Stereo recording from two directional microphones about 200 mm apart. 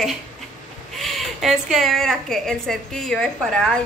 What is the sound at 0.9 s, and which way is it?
A woman's voice, centre (ahead or behind).